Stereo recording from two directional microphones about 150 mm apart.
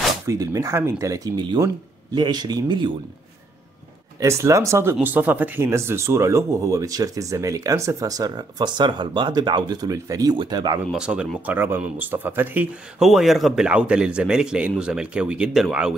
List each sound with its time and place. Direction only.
0.3 s speech: 20° right (ahead or behind)
4.2 s speech: 20° right (ahead or behind)
10.9 s speech: 5° right (ahead or behind)
13.0 s speech: centre (ahead or behind)